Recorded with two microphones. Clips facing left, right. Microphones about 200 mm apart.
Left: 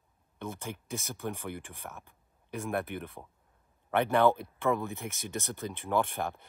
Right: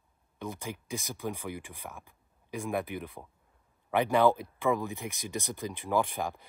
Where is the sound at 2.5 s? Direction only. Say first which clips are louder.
Right 1 dB; centre (ahead or behind).